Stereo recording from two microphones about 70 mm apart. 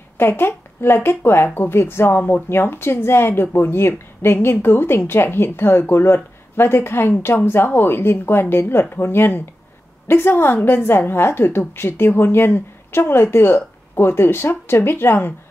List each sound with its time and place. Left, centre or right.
0.2 s speech: left